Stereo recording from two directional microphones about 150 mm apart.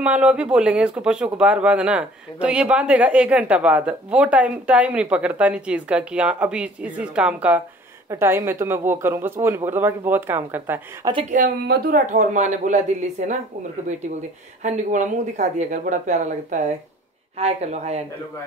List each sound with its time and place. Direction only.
0.0 s speech: 10° right (ahead or behind)
11.2 s speech: 65° right (ahead or behind)
14.6 s speech: 55° right (ahead or behind)